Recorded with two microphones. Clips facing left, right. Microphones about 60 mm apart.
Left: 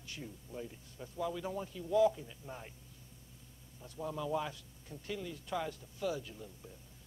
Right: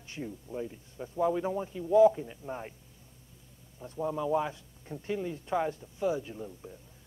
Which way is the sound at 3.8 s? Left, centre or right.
Right.